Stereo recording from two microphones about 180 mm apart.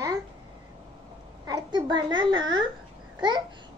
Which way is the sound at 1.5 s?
25° right (ahead or behind).